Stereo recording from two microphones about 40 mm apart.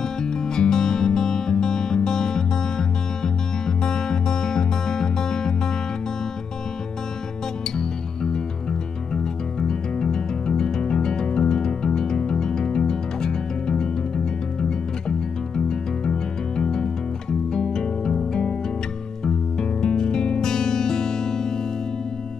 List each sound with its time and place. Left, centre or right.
0.0 s music: centre
7.8 s music: centre